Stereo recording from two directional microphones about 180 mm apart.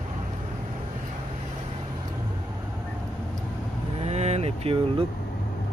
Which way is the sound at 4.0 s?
40° right (ahead or behind).